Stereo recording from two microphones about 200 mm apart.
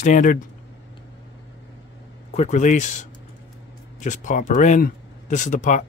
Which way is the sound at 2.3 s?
35° left (ahead or behind).